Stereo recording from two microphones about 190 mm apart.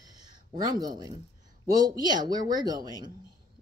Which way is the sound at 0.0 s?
20° right (ahead or behind).